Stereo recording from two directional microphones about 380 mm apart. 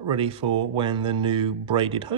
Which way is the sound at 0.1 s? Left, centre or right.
Centre.